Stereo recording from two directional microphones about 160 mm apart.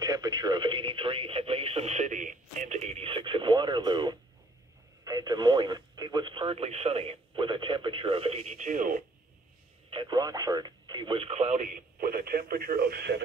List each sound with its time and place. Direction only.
0.0 s speech: 25° right (ahead or behind); by 9.0 s 55° right (ahead or behind)
9.8 s speech: 30° right (ahead or behind); by 13.2 s 80° right